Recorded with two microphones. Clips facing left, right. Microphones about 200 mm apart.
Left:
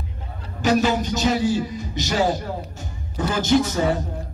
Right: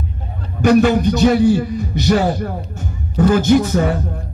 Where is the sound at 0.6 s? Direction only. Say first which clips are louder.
Right 7 dB; 55° right (ahead or behind).